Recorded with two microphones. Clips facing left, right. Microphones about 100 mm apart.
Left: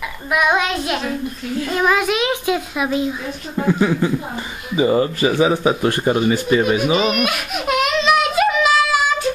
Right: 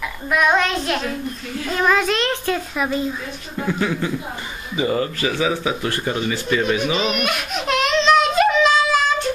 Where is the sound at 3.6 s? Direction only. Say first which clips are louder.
Left 5 dB; 15° left (ahead or behind).